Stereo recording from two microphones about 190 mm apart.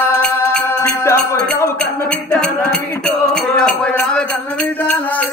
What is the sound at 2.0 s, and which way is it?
Music, 5° left (ahead or behind).